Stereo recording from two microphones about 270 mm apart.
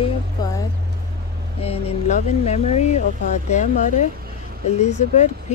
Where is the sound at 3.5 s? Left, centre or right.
Left.